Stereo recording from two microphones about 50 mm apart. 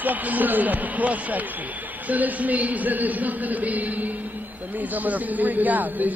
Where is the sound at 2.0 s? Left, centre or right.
Right.